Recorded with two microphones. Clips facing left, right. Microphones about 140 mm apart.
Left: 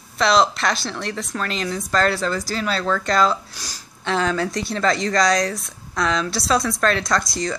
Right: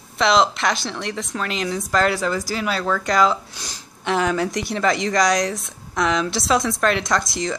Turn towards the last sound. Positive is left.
turn(degrees=-20)  # may be behind; listen again after turning